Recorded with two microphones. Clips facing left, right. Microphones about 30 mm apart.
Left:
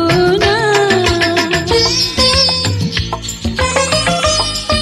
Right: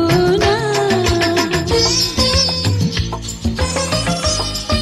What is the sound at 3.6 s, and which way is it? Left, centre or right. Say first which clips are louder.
Music: left 7 dB; left.